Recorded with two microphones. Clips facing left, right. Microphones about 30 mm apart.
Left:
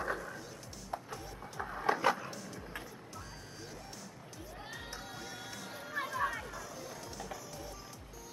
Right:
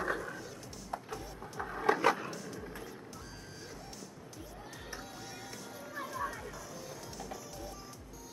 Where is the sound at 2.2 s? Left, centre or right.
Centre.